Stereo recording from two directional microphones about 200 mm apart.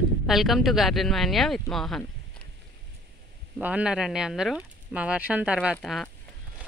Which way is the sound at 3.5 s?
5° right (ahead or behind).